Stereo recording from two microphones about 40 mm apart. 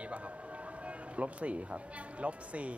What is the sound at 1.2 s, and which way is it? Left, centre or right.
A man's voice, right.